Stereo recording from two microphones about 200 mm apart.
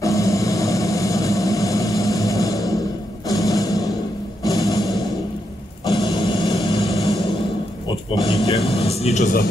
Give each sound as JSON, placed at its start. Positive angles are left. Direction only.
{"t": 0.0, "sound": "vehicle", "side_deg": 15}
{"t": 3.3, "sound": "a sound", "side_deg": 15}
{"t": 8.5, "sound": "vehicle", "side_deg": 30}